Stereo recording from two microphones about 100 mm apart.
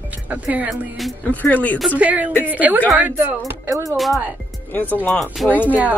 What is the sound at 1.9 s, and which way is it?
Speech, 15° right (ahead or behind).